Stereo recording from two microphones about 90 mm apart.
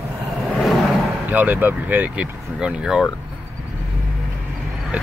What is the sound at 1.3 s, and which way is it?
Speech, 20° right (ahead or behind).